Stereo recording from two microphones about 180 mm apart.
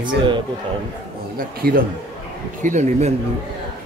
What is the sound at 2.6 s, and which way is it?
Speech, 40° right (ahead or behind).